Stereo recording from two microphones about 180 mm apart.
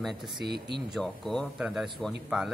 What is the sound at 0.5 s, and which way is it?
Speech, 65° right (ahead or behind).